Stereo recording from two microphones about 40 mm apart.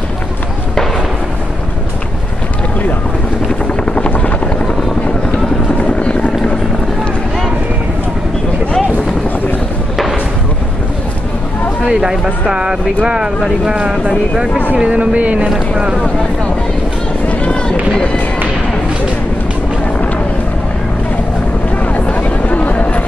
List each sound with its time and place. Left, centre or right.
3.8 s helicopter: left
5.8 s helicopter: left
11.8 s speech: centre
14.8 s speech: right
15.7 s speech: centre
17.3 s run: left
22.0 s a sound: left